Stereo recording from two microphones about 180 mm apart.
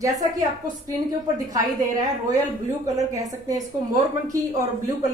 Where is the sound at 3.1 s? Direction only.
20° right (ahead or behind).